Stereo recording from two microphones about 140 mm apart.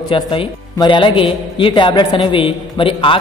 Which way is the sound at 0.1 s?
40° left (ahead or behind).